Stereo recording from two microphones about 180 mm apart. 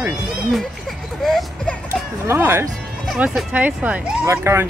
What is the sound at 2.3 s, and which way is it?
Speech, 15° right (ahead or behind).